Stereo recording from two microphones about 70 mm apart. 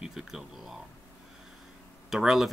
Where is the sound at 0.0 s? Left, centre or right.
Centre.